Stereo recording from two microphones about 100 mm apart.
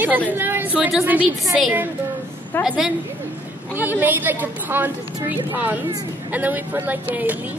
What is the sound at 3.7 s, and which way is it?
A woman's voice, 20° right (ahead or behind).